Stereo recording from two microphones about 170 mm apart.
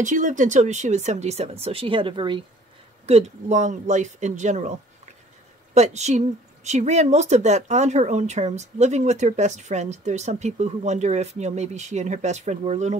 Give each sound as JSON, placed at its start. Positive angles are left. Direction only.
{"t": 0.0, "sound": "speech", "side_deg": -45}
{"t": 3.1, "sound": "speech", "side_deg": -40}